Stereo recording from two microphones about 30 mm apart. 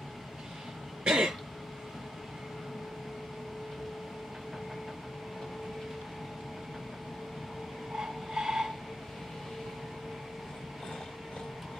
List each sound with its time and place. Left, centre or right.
1.0 s throat clearing: right
7.9 s train: centre